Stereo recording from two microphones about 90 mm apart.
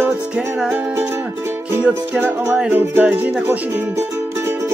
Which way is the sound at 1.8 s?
15° right (ahead or behind).